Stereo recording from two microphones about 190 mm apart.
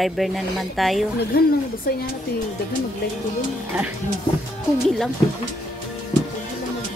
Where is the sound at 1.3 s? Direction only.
60° left (ahead or behind).